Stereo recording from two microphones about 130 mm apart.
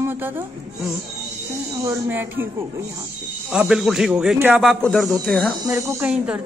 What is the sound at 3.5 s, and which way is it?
A man's voice, 5° right (ahead or behind).